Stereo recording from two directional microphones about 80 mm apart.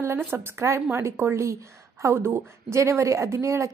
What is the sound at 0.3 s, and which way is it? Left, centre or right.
A woman's voice, right.